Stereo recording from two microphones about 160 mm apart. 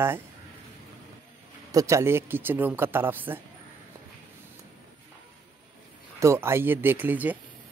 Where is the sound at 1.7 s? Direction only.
20° right (ahead or behind).